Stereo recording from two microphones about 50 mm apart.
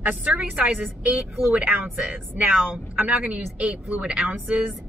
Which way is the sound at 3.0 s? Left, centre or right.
Right.